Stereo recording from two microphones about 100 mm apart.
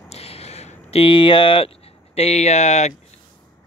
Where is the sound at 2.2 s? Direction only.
90° left.